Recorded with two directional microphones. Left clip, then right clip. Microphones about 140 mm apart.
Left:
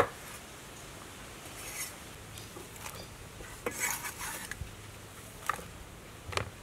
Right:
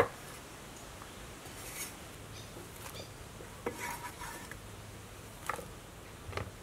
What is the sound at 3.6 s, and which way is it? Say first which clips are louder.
Cutlery: left 4 dB; 15° left (ahead or behind).